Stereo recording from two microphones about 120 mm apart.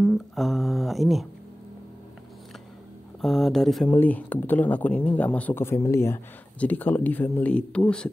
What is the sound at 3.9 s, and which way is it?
Speech, 15° left (ahead or behind).